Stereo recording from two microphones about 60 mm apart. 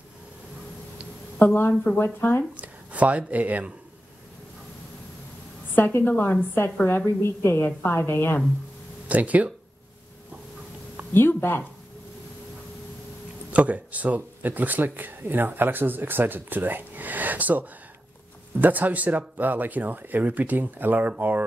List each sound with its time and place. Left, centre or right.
1.4 s a woman's voice: left
2.5 s speech: right
5.8 s a woman's voice: left
8.0 s a woman's voice: left
9.0 s speech: right
11.1 s a woman's voice: left
13.5 s speech: right